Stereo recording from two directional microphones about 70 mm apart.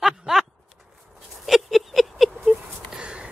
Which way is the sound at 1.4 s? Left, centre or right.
Centre.